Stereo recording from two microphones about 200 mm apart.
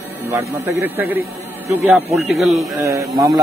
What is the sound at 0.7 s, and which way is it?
Speech, 10° right (ahead or behind).